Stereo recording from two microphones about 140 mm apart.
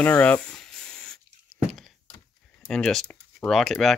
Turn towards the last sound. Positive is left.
turn(degrees=0)  # may be behind; listen again after turning